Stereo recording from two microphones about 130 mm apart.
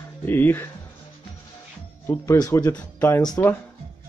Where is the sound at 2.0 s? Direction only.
20° left (ahead or behind).